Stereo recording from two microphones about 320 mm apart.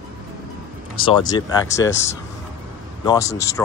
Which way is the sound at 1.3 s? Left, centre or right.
Centre.